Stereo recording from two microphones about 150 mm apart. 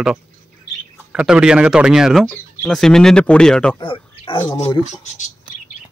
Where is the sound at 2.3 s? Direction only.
10° left (ahead or behind).